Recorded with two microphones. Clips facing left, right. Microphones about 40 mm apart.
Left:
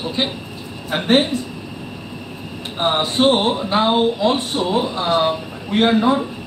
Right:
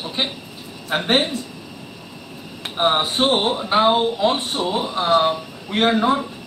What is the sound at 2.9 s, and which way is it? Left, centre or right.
Speech, right.